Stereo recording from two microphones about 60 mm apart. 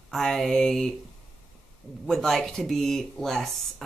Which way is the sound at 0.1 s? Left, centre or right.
Centre.